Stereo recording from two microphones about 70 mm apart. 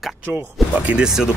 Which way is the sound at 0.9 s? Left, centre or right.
Centre.